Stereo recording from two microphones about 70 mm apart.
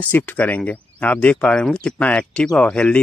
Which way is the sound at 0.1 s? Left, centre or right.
Left.